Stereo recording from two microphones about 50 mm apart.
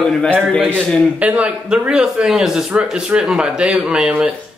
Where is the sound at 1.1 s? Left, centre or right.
Right.